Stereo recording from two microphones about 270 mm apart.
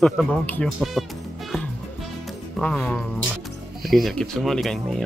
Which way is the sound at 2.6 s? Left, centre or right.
Centre.